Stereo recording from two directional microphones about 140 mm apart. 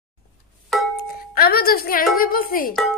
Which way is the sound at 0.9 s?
90° left.